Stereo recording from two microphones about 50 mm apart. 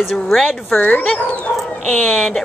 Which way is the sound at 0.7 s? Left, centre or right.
Left.